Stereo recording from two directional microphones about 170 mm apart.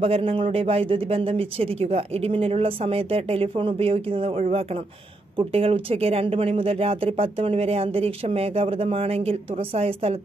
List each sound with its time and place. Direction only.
0.0 s a man's voice: 35° right (ahead or behind)